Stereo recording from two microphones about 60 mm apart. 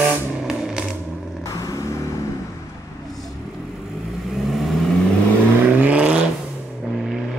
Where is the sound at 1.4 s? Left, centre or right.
Left.